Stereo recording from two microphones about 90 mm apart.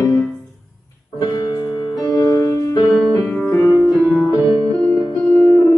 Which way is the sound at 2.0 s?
40° left (ahead or behind).